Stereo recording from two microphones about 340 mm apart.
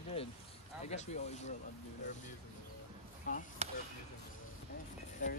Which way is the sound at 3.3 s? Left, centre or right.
Left.